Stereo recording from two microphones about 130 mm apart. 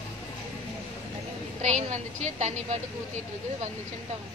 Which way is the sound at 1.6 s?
65° right (ahead or behind).